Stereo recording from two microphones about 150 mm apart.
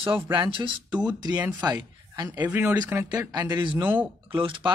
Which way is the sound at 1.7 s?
25° right (ahead or behind).